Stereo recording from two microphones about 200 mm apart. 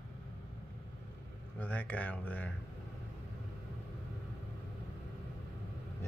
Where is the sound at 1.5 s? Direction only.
5° left (ahead or behind).